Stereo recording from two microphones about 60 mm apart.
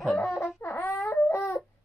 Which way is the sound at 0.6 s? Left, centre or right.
Left.